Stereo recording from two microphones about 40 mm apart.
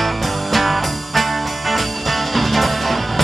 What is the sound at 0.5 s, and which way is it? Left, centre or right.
Music, centre.